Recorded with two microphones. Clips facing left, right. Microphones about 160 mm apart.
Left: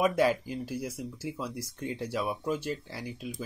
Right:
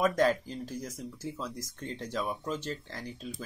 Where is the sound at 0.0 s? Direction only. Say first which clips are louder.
Left 1 dB; 10° left (ahead or behind).